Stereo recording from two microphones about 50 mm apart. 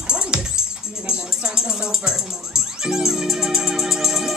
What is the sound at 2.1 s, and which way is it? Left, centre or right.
Music, centre.